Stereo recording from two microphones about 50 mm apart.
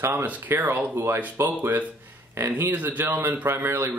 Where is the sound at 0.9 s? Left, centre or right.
Right.